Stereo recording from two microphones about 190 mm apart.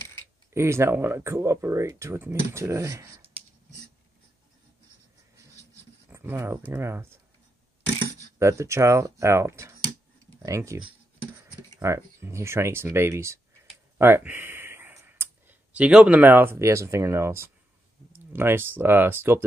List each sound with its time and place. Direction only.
0.5 s speech: 15° right (ahead or behind)
6.1 s speech: 15° right (ahead or behind)
8.4 s speech: 15° right (ahead or behind)
11.8 s speech: 15° right (ahead or behind)